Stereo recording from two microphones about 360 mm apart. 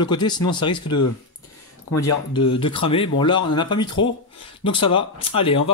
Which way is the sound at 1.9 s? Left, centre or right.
Left.